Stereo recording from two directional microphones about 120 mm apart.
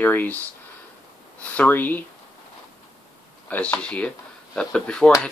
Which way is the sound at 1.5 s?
15° left (ahead or behind).